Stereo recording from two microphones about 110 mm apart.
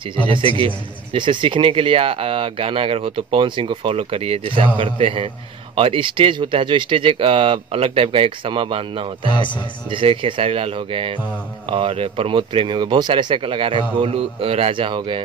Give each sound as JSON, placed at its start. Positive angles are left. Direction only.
{"t": 0.6, "sound": "speech", "side_deg": -50}
{"t": 9.3, "sound": "a man's voice", "side_deg": 45}
{"t": 9.8, "sound": "speech", "side_deg": -50}